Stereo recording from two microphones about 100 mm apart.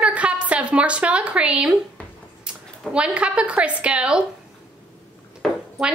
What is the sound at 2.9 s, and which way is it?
A woman's voice, 10° right (ahead or behind).